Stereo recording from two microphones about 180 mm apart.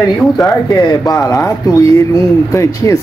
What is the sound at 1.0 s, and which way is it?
Speech, 20° left (ahead or behind).